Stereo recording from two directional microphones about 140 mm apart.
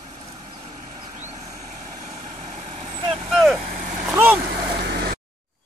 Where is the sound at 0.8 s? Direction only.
55° right (ahead or behind).